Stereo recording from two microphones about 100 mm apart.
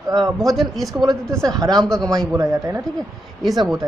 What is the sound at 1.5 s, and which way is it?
A man's voice, 40° right (ahead or behind).